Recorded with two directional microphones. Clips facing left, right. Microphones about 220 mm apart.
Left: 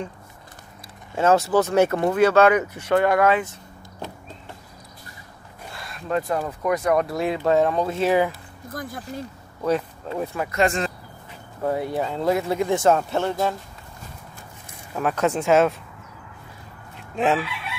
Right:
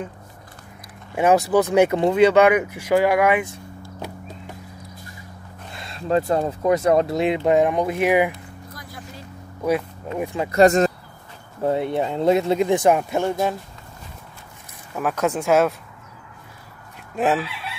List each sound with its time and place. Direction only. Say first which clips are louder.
1.1 s speech: right 2 dB; 15° right (ahead or behind)
5.7 s speech: right 4 dB; 25° right (ahead or behind)
9.6 s speech: right 1 dB; 10° right (ahead or behind)
10.5 s speech: right 8 dB; 40° right (ahead or behind)
11.6 s speech: right 3 dB; 25° right (ahead or behind)
15.0 s speech: even; 5° right (ahead or behind)
17.1 s chicken: right 1 dB; 5° right (ahead or behind)